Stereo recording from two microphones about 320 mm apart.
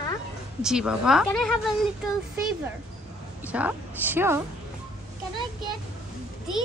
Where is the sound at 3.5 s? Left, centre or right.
Centre.